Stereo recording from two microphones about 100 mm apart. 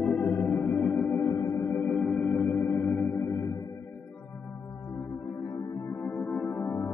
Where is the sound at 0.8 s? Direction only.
5° left (ahead or behind).